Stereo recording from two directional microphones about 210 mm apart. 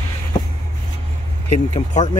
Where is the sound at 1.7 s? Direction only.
35° left (ahead or behind).